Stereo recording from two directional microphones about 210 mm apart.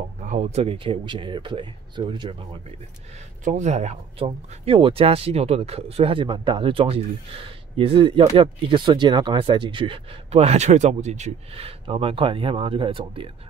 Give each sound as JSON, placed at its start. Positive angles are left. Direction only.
{"t": 0.2, "sound": "speech", "side_deg": -35}
{"t": 3.4, "sound": "speech", "side_deg": -35}